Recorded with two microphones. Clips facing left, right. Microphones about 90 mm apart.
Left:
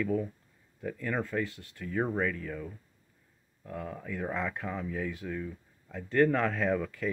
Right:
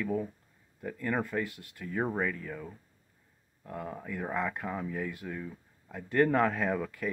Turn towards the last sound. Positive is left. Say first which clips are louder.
# left 2 dB
turn(degrees=-15)  # may be behind; listen again after turning